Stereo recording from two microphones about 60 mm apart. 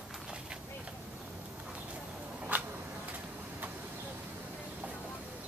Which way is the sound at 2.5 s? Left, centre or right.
Right.